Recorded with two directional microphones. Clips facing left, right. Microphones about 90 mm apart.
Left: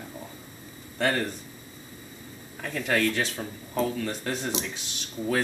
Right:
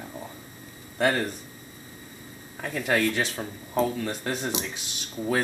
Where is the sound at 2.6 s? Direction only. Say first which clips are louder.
Right 1 dB; 15° right (ahead or behind).